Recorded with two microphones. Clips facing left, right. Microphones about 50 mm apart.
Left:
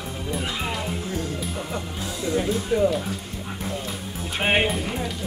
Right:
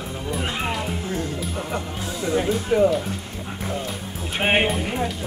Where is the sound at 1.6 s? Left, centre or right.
Centre.